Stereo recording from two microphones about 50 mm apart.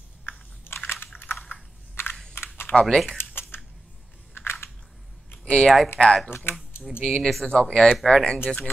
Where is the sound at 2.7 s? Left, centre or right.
Centre.